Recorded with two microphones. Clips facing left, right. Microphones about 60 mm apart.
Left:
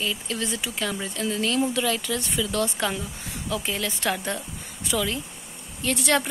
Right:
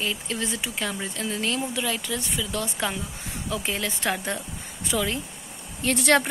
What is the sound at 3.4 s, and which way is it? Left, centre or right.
Speech, right.